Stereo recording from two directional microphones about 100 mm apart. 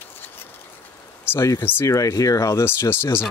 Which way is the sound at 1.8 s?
35° left (ahead or behind).